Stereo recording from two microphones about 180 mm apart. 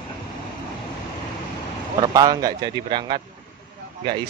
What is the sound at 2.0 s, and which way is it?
Speech, 20° right (ahead or behind).